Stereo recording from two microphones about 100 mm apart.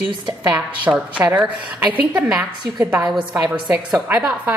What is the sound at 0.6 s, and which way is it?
A woman's voice, 15° right (ahead or behind).